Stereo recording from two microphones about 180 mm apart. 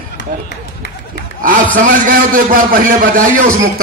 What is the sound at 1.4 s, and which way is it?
A man's voice, 50° right (ahead or behind).